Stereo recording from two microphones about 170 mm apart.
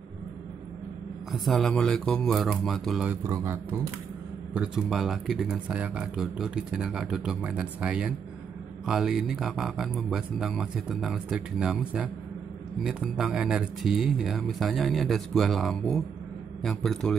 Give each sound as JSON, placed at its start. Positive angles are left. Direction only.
{"t": 1.3, "sound": "speech", "side_deg": 0}
{"t": 4.6, "sound": "speech", "side_deg": 0}